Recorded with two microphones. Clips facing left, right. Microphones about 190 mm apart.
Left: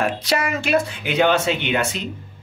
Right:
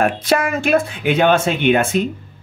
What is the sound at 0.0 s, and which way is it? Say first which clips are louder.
Speech: right 5 dB; 50° right (ahead or behind).